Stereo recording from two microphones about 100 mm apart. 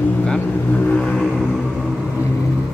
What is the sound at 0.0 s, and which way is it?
Vehicle, 10° left (ahead or behind).